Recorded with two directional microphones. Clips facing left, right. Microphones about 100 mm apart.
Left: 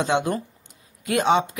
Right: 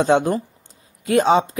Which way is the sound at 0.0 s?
35° right (ahead or behind).